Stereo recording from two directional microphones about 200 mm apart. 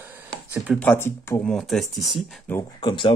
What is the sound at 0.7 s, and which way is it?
Speech, 10° left (ahead or behind).